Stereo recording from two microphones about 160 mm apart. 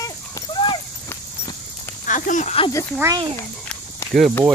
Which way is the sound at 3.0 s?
25° right (ahead or behind).